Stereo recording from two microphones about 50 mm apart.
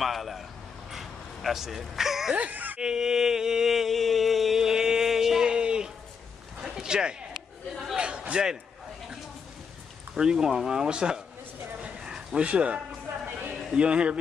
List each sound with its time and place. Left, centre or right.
0.0 s a man's voice: centre
2.3 s baby cry: right
2.8 s mantra: centre
5.5 s a sound: centre
10.1 s speech: centre
12.0 s a sound: centre
13.7 s speech: right